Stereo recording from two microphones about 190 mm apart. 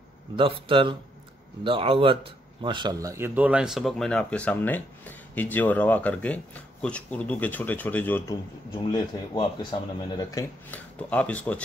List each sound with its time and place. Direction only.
0.4 s speech: 25° right (ahead or behind); by 8.4 s 10° left (ahead or behind)
8.7 s speech: 25° left (ahead or behind)
10.7 s speech: 5° left (ahead or behind)